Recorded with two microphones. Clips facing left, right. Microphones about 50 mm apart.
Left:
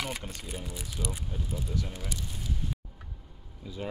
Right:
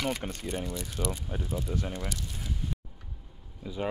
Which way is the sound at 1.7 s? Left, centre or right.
Centre.